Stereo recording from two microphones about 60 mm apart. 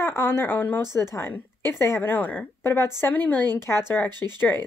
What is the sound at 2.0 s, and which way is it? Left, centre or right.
A woman's voice, left.